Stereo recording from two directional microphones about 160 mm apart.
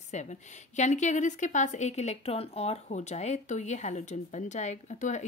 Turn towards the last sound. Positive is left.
turn(degrees=45)  # may be behind; listen again after turning